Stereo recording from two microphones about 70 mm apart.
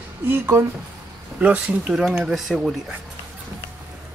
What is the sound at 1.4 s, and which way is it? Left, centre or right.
Speech, centre.